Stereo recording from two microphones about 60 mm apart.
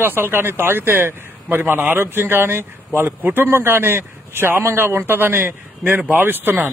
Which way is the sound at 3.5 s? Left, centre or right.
Right.